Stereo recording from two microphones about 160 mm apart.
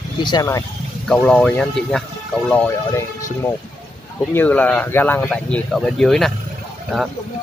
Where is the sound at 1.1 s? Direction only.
5° left (ahead or behind).